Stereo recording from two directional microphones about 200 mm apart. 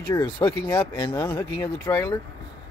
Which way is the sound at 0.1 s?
20° left (ahead or behind).